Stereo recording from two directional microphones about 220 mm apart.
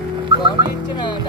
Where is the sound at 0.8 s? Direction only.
20° left (ahead or behind).